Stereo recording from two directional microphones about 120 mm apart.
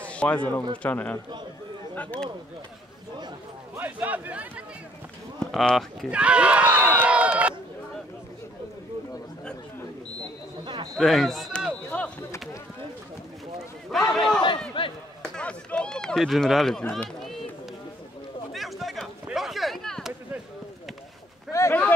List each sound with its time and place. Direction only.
0.0 s a man's voice: 10° left (ahead or behind)
3.7 s speech: 15° right (ahead or behind)
5.4 s speech: 5° left (ahead or behind)
6.0 s a man's voice: 10° right (ahead or behind)
10.6 s a sound: 40° right (ahead or behind)
11.0 s speech: centre (ahead or behind)
11.9 s a sound: 10° left (ahead or behind)
14.1 s speech: 5° left (ahead or behind)
14.8 s speech: 40° left (ahead or behind)
15.3 s speech: 10° left (ahead or behind)
17.2 s run: centre (ahead or behind)
18.5 s a sound: centre (ahead or behind)
21.5 s speech: 25° left (ahead or behind)